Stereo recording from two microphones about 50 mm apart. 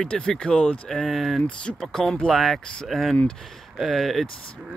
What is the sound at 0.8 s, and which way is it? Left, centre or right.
Speech, centre.